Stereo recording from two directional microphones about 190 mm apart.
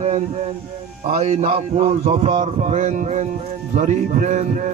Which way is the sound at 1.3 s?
35° right (ahead or behind).